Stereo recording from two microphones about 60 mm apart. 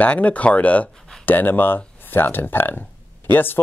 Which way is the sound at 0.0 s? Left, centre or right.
Left.